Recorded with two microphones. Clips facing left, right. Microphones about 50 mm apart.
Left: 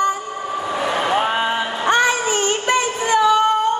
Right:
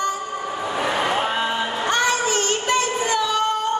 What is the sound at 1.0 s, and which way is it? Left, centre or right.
Vehicle, centre.